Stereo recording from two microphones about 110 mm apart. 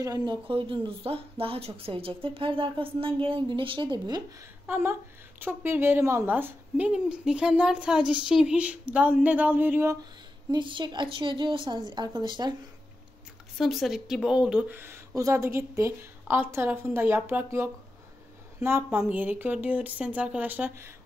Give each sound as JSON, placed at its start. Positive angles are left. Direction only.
{"t": 0.0, "sound": "speech", "side_deg": -40}
{"t": 4.6, "sound": "speech", "side_deg": -20}
{"t": 6.3, "sound": "speech", "side_deg": -15}
{"t": 10.5, "sound": "speech", "side_deg": -45}
{"t": 13.6, "sound": "a woman's voice", "side_deg": 0}
{"t": 14.7, "sound": "a woman's voice", "side_deg": -20}
{"t": 18.9, "sound": "speech", "side_deg": -10}